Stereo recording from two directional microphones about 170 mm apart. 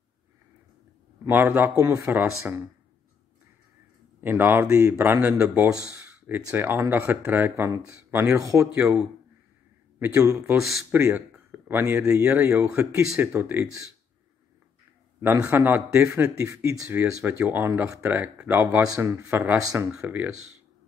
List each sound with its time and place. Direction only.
1.2 s speech: 10° right (ahead or behind)
4.2 s speech: 10° right (ahead or behind)
8.7 s speech: 5° right (ahead or behind)
15.2 s speech: 15° right (ahead or behind)